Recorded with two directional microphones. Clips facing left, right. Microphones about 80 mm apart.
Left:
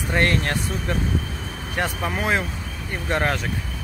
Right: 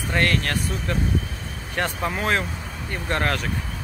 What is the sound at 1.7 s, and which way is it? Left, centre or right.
Speech, centre.